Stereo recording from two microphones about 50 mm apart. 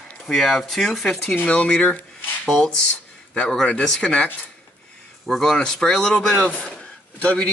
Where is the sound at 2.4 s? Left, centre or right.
Centre.